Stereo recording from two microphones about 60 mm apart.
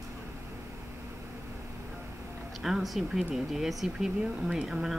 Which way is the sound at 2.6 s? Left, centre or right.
Centre.